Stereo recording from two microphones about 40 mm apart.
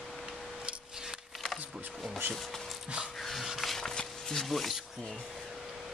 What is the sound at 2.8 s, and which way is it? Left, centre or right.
Dog, right.